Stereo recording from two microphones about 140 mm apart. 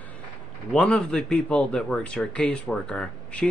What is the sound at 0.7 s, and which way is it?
Speech, 10° left (ahead or behind).